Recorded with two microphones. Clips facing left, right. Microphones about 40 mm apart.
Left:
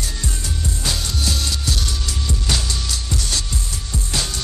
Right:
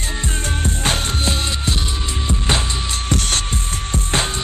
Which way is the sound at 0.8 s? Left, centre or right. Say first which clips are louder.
Right 3 dB; right.